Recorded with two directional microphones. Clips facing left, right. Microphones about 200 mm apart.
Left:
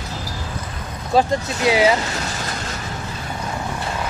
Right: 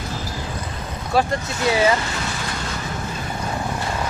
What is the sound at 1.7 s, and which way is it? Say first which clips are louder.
Speech: left 2 dB; 15° left (ahead or behind).